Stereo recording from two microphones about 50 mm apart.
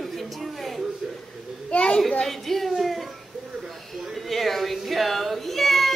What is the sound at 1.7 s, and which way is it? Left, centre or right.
Speech, left.